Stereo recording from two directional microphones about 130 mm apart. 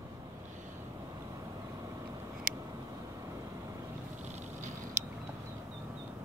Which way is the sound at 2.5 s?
90° right.